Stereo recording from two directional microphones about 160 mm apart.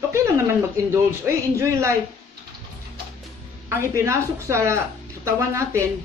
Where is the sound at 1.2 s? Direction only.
20° right (ahead or behind).